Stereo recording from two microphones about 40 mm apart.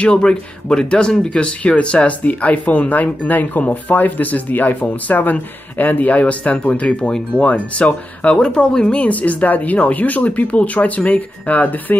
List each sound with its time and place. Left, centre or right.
0.0 s speech: left
2.2 s speech: left
8.9 s speech: left